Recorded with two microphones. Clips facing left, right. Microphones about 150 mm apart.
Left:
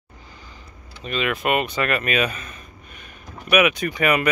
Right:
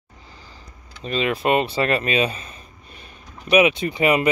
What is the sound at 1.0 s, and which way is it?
Speech, 30° right (ahead or behind).